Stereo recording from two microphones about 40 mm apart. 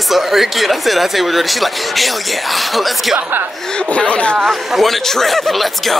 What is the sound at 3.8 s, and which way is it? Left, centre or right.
Speech, left.